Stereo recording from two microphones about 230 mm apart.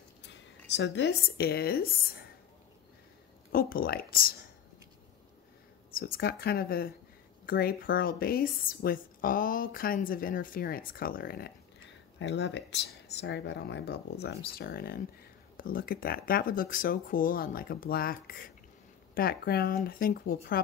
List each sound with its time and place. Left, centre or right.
0.2 s speech: left
3.5 s speech: left
6.1 s speech: left